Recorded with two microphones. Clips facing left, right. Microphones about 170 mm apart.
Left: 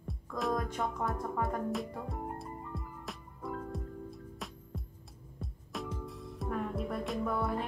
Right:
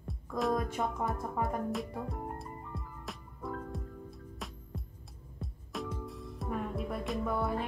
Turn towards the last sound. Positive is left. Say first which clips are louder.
# even
turn(degrees=0)  # may be behind; listen again after turning